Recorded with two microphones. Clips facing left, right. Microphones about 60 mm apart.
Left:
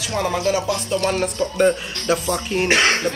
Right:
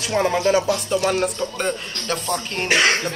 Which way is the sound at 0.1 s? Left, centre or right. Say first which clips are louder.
Right 3 dB; right.